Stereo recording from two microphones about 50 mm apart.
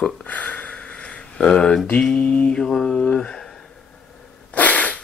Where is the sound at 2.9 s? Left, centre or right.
Centre.